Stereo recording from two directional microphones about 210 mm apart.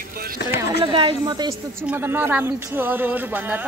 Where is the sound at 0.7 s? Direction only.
25° right (ahead or behind).